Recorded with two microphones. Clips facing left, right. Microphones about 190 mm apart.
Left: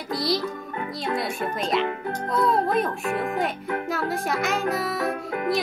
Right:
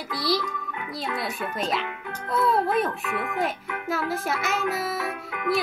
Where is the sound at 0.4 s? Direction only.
40° left (ahead or behind).